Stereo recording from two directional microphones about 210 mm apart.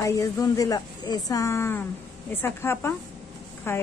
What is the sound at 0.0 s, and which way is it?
Speech, 15° left (ahead or behind).